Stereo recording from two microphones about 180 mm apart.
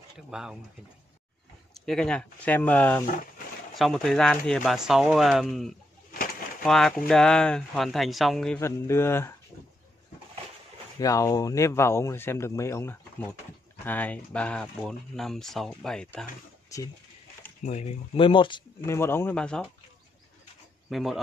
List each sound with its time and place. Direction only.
0.3 s speech: 5° right (ahead or behind)
1.7 s speech: centre (ahead or behind)
8.5 s speech: 15° left (ahead or behind)
11.0 s speech: 20° left (ahead or behind)
16.6 s a sound: 20° left (ahead or behind)
17.6 s speech: 35° left (ahead or behind)
18.8 s speech: 15° left (ahead or behind)
20.9 s speech: centre (ahead or behind)